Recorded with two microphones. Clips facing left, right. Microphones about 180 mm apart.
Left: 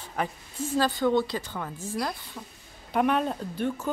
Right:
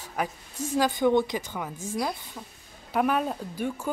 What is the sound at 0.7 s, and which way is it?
A woman's voice, 15° right (ahead or behind).